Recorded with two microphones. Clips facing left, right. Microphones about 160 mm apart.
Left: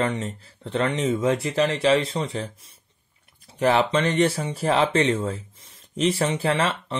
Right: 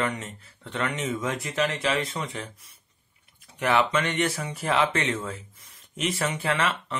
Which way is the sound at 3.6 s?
35° left (ahead or behind).